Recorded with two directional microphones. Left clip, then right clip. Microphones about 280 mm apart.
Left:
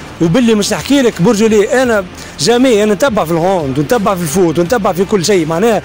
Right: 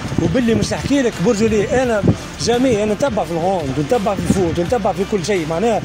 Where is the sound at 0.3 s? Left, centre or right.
Left.